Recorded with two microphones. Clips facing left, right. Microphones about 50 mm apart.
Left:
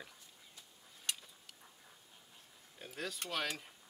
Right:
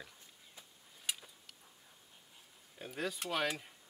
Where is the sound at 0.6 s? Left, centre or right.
Centre.